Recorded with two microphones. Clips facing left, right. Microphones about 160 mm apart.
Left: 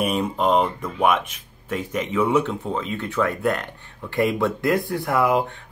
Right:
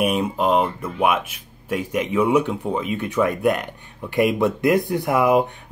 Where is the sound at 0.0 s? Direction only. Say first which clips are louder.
Right 1 dB; 10° right (ahead or behind).